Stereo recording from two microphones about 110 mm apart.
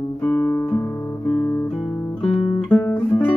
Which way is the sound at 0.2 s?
20° left (ahead or behind).